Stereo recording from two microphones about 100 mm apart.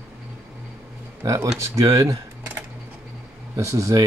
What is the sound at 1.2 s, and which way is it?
Speech, 30° right (ahead or behind).